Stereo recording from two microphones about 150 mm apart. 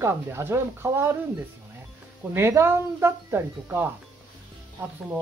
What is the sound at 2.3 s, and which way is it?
Speech, 15° right (ahead or behind).